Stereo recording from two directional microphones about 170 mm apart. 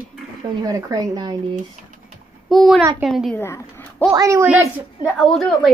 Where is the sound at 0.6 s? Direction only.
20° right (ahead or behind).